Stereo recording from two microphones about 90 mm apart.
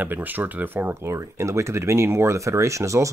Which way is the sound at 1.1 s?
35° right (ahead or behind).